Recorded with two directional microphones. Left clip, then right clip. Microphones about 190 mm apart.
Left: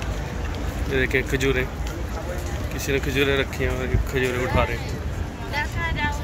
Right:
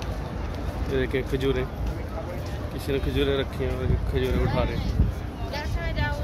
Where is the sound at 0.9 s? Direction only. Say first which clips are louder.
Left 4 dB; 10° right (ahead or behind).